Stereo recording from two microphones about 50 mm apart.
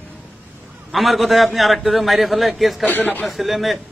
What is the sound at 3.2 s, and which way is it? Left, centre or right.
Speech, centre.